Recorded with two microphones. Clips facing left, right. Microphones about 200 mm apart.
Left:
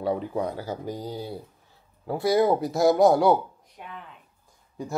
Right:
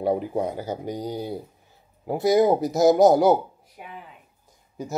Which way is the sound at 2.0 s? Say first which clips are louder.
Right 3 dB; 20° right (ahead or behind).